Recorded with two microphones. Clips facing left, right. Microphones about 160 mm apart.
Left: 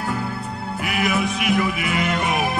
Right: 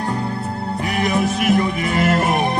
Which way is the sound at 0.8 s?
40° right (ahead or behind).